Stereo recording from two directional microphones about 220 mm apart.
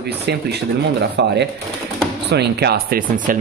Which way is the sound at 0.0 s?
50° right (ahead or behind).